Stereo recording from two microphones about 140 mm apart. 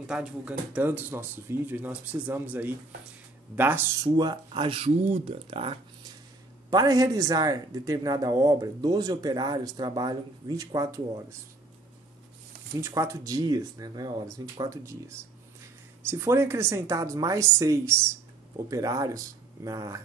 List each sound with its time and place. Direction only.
0.0 s speech: 5° right (ahead or behind)
4.2 s speech: 35° right (ahead or behind)
6.7 s a man's voice: 25° right (ahead or behind)
12.7 s a man's voice: 20° right (ahead or behind)